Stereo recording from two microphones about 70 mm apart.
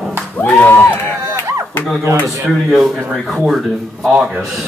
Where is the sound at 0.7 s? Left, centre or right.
Left.